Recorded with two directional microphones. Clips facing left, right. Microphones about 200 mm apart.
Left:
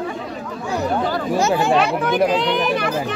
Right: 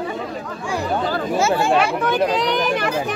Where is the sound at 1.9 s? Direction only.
10° left (ahead or behind).